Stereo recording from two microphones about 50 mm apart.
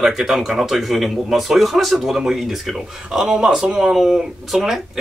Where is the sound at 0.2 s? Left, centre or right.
Centre.